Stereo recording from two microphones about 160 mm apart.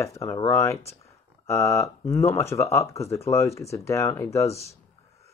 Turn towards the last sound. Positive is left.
turn(degrees=20)  # may be behind; listen again after turning